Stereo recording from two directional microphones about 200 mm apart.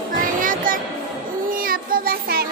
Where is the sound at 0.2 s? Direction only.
40° right (ahead or behind).